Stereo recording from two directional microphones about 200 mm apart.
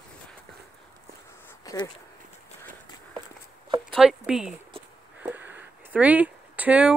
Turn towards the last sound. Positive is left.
turn(degrees=-5)  # may be behind; listen again after turning